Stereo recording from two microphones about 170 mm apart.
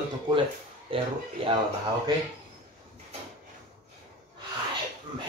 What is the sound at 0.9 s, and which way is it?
Speech, 30° right (ahead or behind).